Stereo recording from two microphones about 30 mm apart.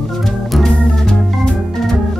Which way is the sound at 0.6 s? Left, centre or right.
Left.